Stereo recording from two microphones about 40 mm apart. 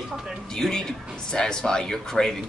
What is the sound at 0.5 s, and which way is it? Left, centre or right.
Speech, centre.